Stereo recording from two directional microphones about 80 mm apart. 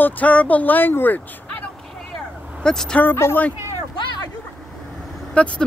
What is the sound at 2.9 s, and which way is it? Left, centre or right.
Speech, left.